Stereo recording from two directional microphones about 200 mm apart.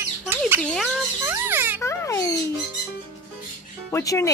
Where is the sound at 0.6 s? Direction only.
5° left (ahead or behind).